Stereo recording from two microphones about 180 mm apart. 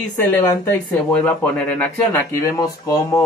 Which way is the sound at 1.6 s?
10° left (ahead or behind).